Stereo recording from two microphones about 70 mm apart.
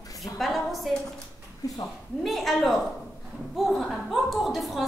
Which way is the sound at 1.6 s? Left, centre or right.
Left.